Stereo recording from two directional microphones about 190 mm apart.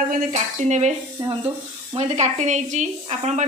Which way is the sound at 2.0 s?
35° right (ahead or behind).